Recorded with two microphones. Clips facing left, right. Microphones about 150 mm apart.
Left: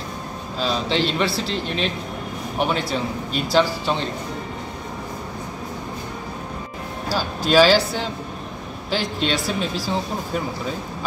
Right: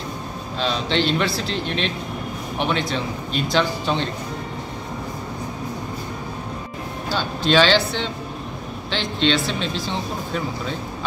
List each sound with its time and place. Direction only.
0.6 s speech: centre (ahead or behind)
7.2 s speech: 5° left (ahead or behind)